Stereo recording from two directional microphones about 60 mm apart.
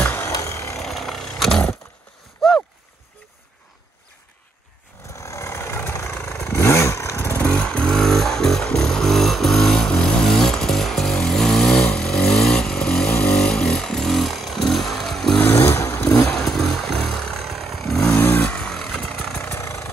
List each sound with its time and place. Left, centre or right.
0.0 s a sound: left
0.3 s a sound: left
0.7 s vehicle: centre
2.4 s boat: centre
5.1 s vehicle: left
6.7 s motorcycle: left
7.5 s vehicle: centre
8.0 s music: centre
12.0 s vehicle: centre
13.3 s a sound: centre
15.3 s vehicle: left
16.4 s vehicle: centre
18.1 s vehicle: left
18.6 s vehicle: centre